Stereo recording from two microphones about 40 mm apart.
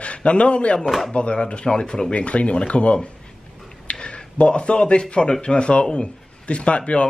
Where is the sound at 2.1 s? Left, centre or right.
Left.